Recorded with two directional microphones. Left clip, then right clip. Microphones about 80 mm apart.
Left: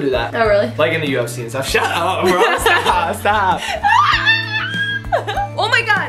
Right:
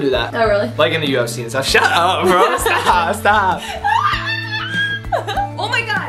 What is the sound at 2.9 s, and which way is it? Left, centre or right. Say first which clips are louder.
Speech: right 2 dB; centre.